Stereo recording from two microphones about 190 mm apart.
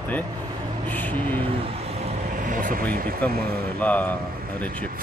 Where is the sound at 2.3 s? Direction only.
45° right (ahead or behind).